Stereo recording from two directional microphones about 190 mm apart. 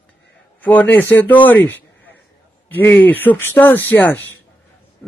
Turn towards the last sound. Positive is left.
turn(degrees=10)  # may be behind; listen again after turning